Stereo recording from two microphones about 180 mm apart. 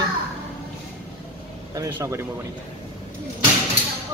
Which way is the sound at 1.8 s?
15° right (ahead or behind).